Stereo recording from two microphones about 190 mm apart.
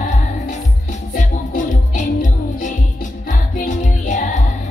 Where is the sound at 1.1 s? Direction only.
40° left (ahead or behind).